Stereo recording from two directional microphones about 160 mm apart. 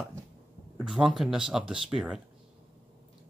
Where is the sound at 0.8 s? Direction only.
5° right (ahead or behind).